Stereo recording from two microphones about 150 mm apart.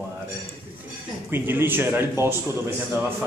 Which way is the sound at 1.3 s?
15° right (ahead or behind).